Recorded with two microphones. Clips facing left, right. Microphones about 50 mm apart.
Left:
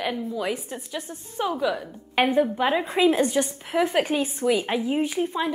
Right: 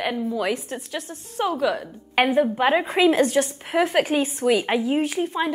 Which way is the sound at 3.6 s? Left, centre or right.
Centre.